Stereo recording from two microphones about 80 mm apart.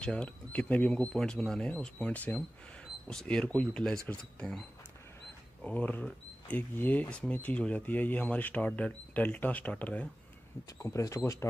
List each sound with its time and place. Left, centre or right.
0.0 s speech: centre
10.8 s speech: left